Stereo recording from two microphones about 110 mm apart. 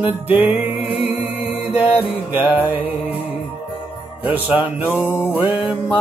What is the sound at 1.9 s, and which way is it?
Music, 15° right (ahead or behind).